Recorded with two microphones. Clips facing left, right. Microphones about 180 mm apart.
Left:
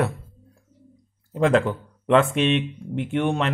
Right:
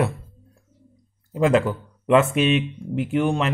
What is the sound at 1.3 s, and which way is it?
A man's voice, 5° right (ahead or behind).